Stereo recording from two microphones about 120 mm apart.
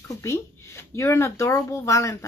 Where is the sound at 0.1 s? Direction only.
25° left (ahead or behind).